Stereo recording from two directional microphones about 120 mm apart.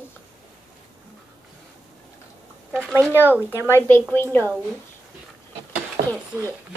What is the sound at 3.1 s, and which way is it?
A child's voice, 20° left (ahead or behind).